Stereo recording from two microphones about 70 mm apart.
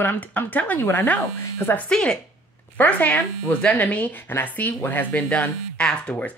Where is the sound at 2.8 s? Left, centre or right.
Left.